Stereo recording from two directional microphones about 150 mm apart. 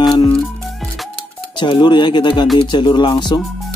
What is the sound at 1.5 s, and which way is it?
Speech, 30° left (ahead or behind).